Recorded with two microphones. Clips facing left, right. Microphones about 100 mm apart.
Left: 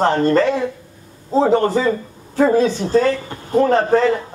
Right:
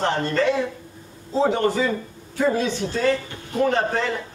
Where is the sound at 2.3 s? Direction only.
40° left (ahead or behind).